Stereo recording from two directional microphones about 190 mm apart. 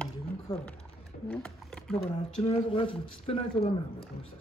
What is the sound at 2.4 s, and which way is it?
Speech, 30° left (ahead or behind).